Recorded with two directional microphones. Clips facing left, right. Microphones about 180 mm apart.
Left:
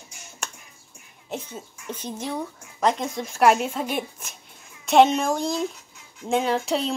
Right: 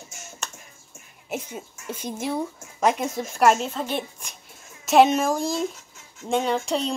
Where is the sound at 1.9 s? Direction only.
10° right (ahead or behind).